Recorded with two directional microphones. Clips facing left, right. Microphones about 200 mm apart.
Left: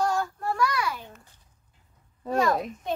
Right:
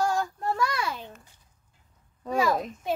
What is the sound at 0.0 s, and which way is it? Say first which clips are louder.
Child singing: even; 15° right (ahead or behind).